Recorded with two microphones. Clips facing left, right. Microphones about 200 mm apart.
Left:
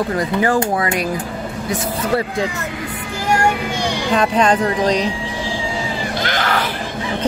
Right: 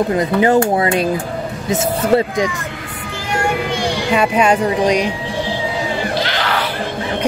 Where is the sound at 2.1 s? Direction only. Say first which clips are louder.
Right 4 dB; 15° right (ahead or behind).